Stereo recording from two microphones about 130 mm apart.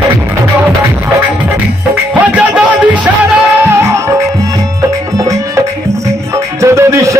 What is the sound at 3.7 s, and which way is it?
Music, 20° right (ahead or behind).